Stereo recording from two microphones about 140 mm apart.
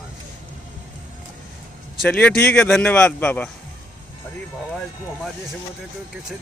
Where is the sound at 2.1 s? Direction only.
10° left (ahead or behind).